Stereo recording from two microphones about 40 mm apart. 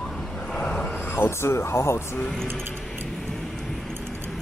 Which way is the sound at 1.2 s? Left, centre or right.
Left.